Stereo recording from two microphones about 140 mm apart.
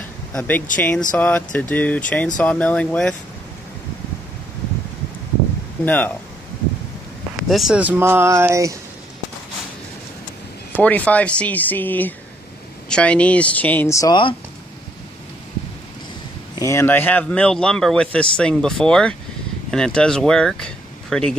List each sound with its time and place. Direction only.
0.3 s a man's voice: 10° left (ahead or behind)
5.9 s a man's voice: 10° left (ahead or behind)
7.3 s speech: centre (ahead or behind); by 8.7 s 20° right (ahead or behind)
10.8 s a man's voice: 10° left (ahead or behind)
16.5 s a man's voice: 20° left (ahead or behind); by 21.4 s 5° left (ahead or behind)